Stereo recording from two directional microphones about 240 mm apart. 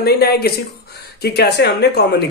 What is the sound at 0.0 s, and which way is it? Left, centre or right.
Speech, left.